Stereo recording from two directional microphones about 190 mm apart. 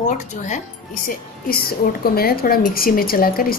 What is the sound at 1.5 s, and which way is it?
A woman's voice, 50° left (ahead or behind).